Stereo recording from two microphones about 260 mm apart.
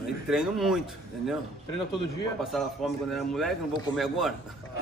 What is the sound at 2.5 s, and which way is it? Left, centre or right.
Speech, centre.